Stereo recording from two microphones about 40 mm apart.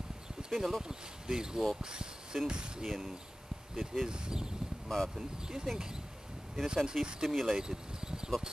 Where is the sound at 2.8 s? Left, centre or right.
Centre.